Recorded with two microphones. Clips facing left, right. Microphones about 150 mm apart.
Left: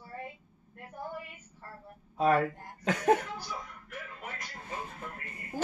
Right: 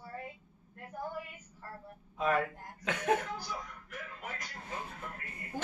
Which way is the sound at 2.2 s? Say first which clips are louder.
Left 5 dB; 40° left (ahead or behind).